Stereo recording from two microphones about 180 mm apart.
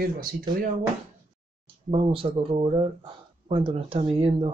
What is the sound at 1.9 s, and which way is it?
Speech, 30° right (ahead or behind).